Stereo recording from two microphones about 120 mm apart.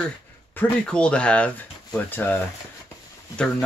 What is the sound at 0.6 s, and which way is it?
Speech, 10° left (ahead or behind).